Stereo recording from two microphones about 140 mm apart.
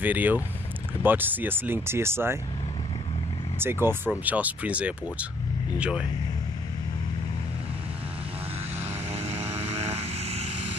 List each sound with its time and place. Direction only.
0.0 s speech: 10° right (ahead or behind)
3.5 s speech: 15° right (ahead or behind)
9.1 s vehicle: 50° right (ahead or behind)